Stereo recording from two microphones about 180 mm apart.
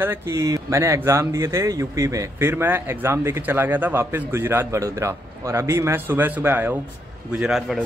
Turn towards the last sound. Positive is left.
turn(degrees=0)  # may be behind; listen again after turning